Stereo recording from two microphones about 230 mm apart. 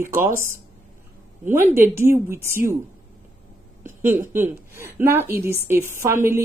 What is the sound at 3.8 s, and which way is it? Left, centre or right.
A woman's voice, centre.